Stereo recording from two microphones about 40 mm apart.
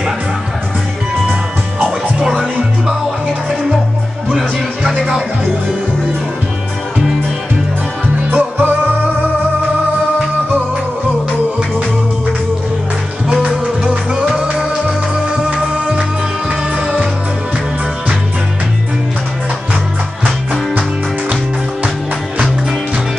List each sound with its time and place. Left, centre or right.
8.3 s music: right
13.5 s music: centre
16.0 s music: right